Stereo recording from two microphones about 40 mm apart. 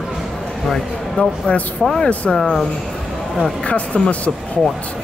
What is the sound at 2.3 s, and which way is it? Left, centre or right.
Speech, centre.